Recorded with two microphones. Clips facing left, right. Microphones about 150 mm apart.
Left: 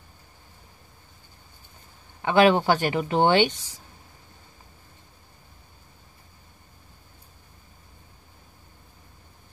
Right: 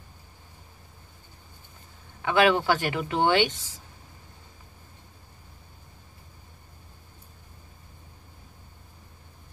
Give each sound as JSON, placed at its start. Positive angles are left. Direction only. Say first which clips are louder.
{"t": 2.2, "sound": "speech", "louder": "left 3 dB", "side_deg": 35}